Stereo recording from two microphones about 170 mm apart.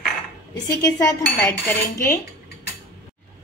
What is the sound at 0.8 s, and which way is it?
A woman's voice, 20° left (ahead or behind).